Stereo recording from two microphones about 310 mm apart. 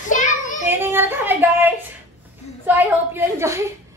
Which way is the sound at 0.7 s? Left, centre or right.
Centre.